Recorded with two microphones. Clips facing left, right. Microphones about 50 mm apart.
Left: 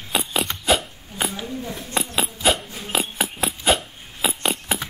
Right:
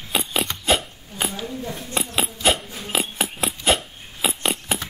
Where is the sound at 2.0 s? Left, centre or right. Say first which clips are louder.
Left 1 dB; centre.